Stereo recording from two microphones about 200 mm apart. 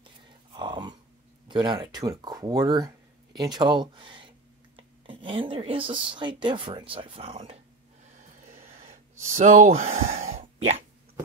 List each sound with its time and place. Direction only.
0.6 s a sound: 20° right (ahead or behind)
1.5 s speech: 20° right (ahead or behind)
9.4 s speech: 35° right (ahead or behind)